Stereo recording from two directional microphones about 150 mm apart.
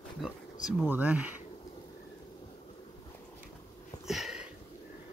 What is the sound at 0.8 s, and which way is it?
Speech, 10° right (ahead or behind).